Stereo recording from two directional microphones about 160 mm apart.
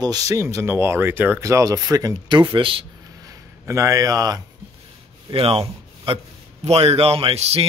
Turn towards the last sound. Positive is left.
turn(degrees=-40)  # may be behind; listen again after turning